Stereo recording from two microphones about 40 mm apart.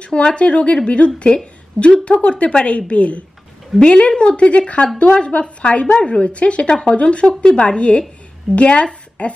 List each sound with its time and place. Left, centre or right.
0.0 s a woman's voice: left